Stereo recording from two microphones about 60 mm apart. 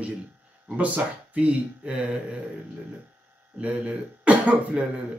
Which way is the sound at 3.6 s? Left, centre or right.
Centre.